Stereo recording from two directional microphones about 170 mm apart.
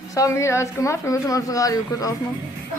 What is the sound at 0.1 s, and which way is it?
A woman's voice, 20° left (ahead or behind).